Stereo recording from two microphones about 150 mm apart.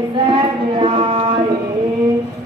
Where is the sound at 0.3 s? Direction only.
35° right (ahead or behind).